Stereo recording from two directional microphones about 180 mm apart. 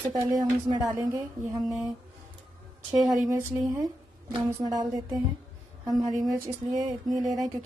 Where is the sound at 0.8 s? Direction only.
15° right (ahead or behind).